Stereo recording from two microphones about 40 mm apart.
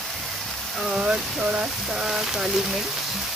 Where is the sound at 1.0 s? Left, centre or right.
Right.